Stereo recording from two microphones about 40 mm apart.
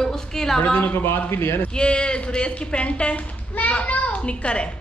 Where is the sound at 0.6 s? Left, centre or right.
Left.